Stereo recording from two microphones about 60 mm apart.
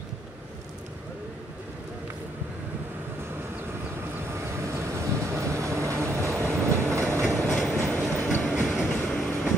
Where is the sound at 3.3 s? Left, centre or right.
Right.